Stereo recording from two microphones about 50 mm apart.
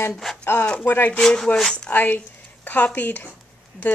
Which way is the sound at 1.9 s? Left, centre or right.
Left.